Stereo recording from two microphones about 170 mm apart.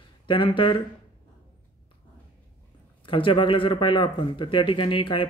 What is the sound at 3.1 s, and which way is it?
Speech, 30° left (ahead or behind).